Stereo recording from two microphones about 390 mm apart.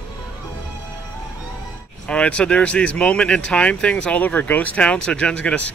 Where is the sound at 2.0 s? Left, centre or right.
Centre.